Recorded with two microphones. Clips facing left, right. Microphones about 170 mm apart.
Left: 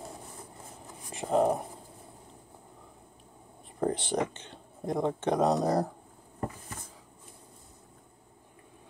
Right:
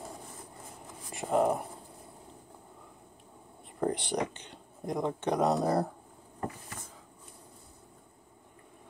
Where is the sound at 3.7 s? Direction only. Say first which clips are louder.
Left 1 dB; 20° left (ahead or behind).